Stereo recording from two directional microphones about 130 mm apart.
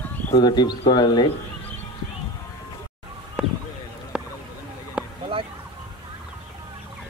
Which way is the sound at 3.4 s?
10° right (ahead or behind).